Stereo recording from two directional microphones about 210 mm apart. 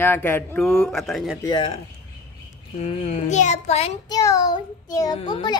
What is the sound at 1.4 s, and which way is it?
Speech, 25° left (ahead or behind).